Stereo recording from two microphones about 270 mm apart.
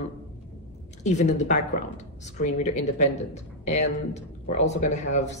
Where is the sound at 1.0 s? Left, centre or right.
Left.